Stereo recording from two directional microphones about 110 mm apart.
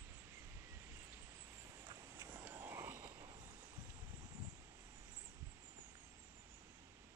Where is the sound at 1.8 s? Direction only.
35° right (ahead or behind).